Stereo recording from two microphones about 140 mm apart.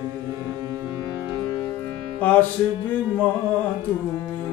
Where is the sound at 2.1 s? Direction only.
10° left (ahead or behind).